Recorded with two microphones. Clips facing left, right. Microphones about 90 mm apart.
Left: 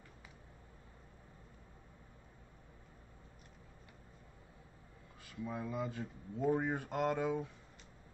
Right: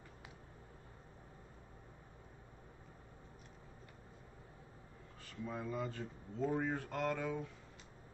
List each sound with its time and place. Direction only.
5.2 s speech: 10° left (ahead or behind)